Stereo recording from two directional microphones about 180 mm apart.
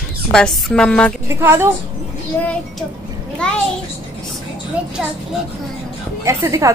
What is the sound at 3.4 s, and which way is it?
Speech, 5° left (ahead or behind).